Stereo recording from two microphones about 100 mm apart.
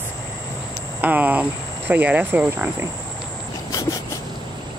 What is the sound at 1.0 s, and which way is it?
Cricket, 15° right (ahead or behind).